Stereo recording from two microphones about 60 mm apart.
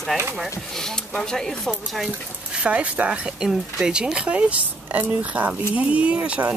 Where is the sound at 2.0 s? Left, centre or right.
Centre.